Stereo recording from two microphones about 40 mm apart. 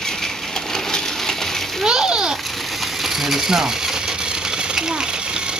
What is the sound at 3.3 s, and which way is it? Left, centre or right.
Speech, centre.